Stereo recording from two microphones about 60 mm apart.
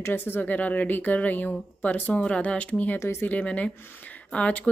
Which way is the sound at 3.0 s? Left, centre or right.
Left.